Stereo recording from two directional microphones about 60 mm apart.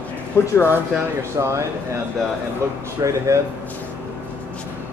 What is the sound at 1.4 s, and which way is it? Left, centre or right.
Speech, right.